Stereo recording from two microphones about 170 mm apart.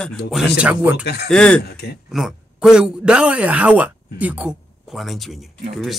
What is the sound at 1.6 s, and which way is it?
Speech, 70° left (ahead or behind).